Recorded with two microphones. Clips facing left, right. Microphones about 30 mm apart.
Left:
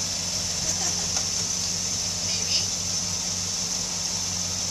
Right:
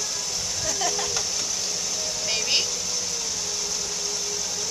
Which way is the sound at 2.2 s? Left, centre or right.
Right.